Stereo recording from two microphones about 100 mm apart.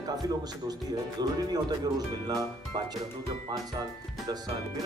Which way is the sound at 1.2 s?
45° right (ahead or behind).